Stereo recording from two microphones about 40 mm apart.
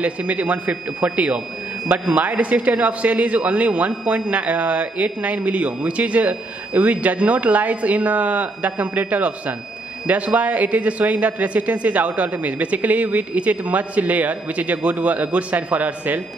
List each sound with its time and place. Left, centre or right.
0.3 s speech: right